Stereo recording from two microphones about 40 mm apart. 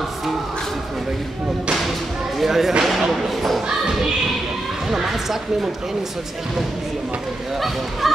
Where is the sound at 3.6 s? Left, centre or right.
Centre.